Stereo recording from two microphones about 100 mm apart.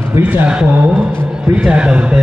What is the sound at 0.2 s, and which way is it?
A man's voice, 15° right (ahead or behind).